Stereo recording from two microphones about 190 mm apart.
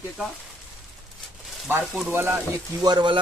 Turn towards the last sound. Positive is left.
turn(degrees=-25)  # may be behind; listen again after turning